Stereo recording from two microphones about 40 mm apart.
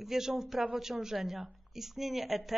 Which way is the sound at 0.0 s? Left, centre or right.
Centre.